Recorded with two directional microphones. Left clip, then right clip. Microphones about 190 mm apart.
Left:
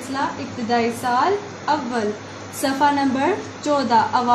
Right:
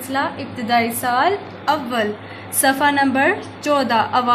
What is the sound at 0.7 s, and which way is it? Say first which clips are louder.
A woman's voice: right 2 dB; 25° right (ahead or behind).